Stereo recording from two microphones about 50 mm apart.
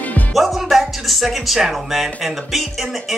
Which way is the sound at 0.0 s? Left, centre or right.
Left.